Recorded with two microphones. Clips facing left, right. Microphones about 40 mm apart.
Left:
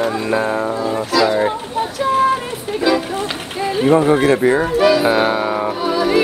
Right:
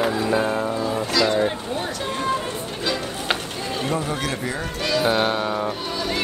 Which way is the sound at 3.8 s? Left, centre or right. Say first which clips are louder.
Left 14 dB; left.